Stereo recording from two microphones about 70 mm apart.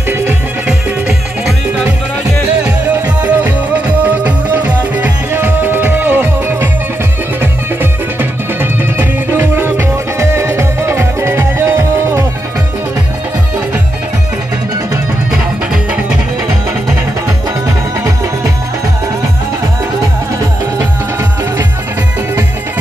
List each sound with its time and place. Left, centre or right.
0.7 s music: centre
3.2 s music: right
7.8 s music: right
17.6 s music: right